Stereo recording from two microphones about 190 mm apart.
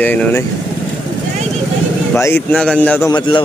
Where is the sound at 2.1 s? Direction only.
15° left (ahead or behind).